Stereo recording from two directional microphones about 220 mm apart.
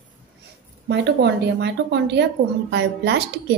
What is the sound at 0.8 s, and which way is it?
A woman's voice, 50° right (ahead or behind).